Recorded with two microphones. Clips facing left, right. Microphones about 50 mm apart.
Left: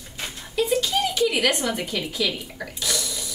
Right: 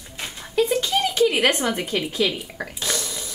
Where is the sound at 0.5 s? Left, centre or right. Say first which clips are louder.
Right 2 dB; right.